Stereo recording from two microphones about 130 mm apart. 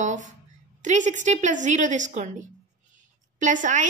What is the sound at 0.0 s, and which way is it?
A woman's voice, 70° right (ahead or behind).